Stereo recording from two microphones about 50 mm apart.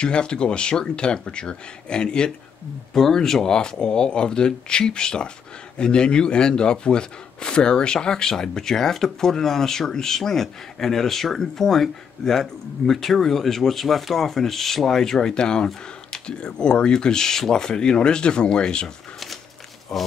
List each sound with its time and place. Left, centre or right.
0.0 s speech: centre
2.9 s speech: centre
19.9 s speech: centre